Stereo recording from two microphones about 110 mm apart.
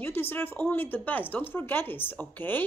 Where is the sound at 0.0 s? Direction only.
20° left (ahead or behind).